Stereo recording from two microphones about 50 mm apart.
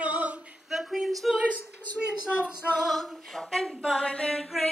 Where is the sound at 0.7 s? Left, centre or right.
Centre.